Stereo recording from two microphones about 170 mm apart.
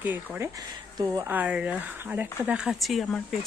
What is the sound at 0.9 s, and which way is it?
Speech, 20° right (ahead or behind).